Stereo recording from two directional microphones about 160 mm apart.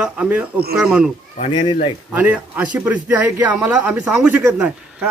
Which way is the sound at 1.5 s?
30° left (ahead or behind).